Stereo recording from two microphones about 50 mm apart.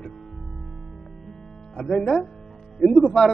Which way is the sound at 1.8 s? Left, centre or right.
Left.